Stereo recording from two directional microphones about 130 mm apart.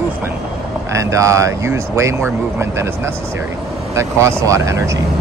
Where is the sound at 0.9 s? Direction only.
25° right (ahead or behind).